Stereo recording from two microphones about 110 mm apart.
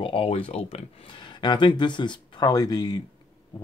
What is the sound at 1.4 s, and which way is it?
Speech, 40° left (ahead or behind).